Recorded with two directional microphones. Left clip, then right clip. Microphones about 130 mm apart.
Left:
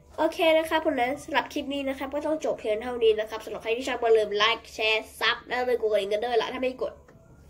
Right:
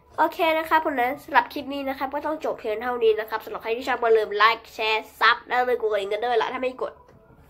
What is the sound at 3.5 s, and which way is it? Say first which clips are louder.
Speech: left 1 dB; 35° right (ahead or behind).